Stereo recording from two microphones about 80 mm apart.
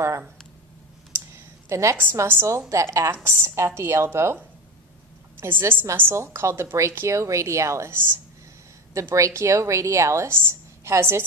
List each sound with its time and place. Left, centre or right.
1.3 s computer keyboard: right
2.2 s a woman's voice: right
5.4 s a woman's voice: right